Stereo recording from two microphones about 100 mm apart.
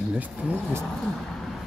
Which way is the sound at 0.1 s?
15° right (ahead or behind).